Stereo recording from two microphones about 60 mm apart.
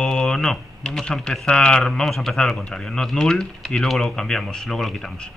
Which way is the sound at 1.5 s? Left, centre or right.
Centre.